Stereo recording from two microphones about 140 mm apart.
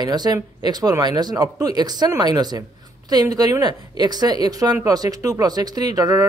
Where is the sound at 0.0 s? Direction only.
30° right (ahead or behind).